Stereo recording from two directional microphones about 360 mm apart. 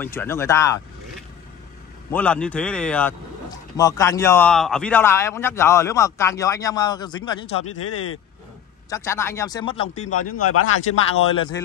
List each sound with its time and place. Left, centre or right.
0.0 s speech: centre
2.0 s speech: centre
7.8 s speech: left
8.9 s speech: centre
10.0 s speech: left